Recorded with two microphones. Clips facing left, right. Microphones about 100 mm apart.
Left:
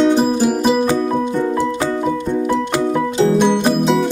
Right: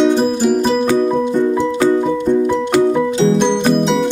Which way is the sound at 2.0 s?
Centre (ahead or behind).